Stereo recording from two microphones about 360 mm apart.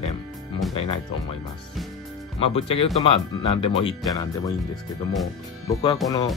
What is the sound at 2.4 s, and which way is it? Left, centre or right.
Speech, centre.